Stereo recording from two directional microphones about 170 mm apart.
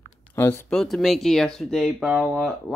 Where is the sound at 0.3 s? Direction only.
15° left (ahead or behind).